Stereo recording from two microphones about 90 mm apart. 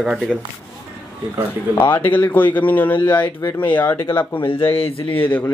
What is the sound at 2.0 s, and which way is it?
A man's voice, 20° left (ahead or behind).